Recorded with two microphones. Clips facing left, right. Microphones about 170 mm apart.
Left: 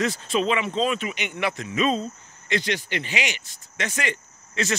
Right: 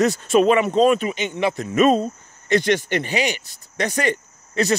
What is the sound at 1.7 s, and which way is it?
Speech, 50° right (ahead or behind).